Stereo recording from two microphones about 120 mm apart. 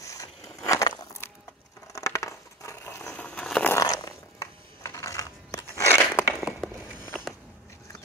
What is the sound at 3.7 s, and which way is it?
Zipper, 30° left (ahead or behind).